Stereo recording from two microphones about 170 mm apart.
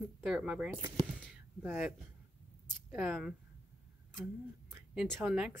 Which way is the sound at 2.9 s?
10° right (ahead or behind).